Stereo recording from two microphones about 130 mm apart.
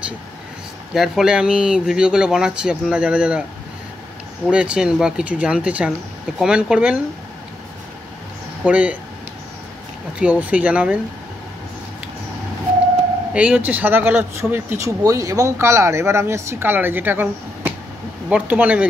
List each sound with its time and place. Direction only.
0.9 s speech: centre (ahead or behind)
4.5 s speech: 10° right (ahead or behind)
8.6 s speech: 10° right (ahead or behind)
10.1 s speech: 10° right (ahead or behind)
13.3 s speech: 10° right (ahead or behind)